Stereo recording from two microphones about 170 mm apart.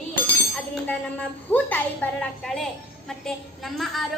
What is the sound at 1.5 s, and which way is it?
A woman's voice, 10° left (ahead or behind).